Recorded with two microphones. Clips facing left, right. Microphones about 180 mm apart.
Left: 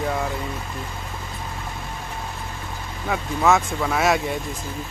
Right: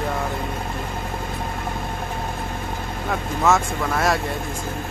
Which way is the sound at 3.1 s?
Centre (ahead or behind).